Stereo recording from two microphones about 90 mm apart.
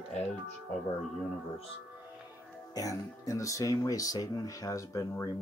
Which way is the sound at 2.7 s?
40° left (ahead or behind).